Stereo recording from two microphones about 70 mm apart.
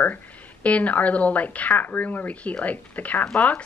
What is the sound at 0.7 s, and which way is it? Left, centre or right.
Speech, left.